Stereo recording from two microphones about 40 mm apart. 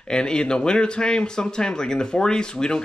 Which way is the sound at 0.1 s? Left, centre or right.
Left.